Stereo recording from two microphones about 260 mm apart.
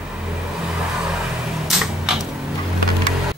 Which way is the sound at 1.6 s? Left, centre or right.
Centre.